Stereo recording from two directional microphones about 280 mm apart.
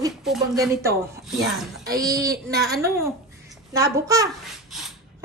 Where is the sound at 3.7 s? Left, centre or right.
Centre.